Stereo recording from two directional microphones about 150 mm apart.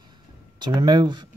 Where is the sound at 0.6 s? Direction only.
30° right (ahead or behind).